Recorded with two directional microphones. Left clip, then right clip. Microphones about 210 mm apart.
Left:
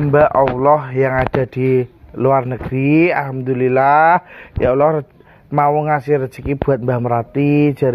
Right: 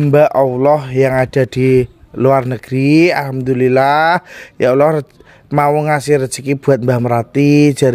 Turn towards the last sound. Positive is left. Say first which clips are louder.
# right 4 dB
turn(degrees=-65)  # may be behind; listen again after turning